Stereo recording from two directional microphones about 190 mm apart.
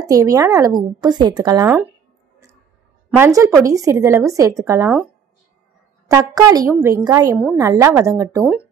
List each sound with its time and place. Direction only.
0.0 s a woman's voice: 20° right (ahead or behind)
3.1 s a woman's voice: 15° right (ahead or behind)
6.0 s a woman's voice: 15° right (ahead or behind)